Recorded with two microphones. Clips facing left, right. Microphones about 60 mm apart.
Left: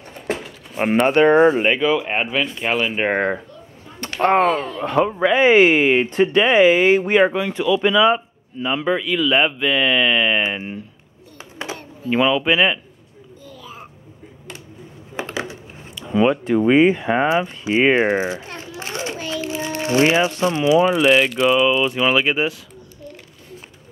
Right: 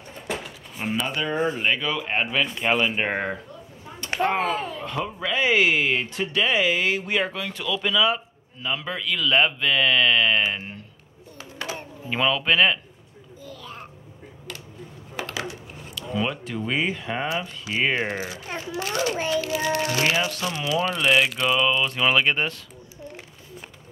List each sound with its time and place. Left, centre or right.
1.0 s speech: left
1.8 s speech: centre
4.2 s speech: left
4.8 s speech: left; by 10.8 s centre
11.6 s a sound: left
12.1 s speech: centre
13.5 s babbling: centre
15.1 s speech: left
18.8 s a sound: left
19.3 s speech: left
21.0 s speech: centre